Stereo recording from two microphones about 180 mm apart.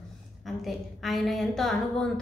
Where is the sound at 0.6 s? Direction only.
Centre (ahead or behind).